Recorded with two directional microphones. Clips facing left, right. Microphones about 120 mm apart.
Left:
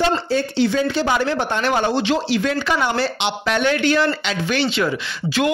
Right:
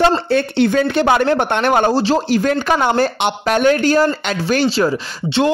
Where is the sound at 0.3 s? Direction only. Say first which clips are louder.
Right 4 dB; 60° right (ahead or behind).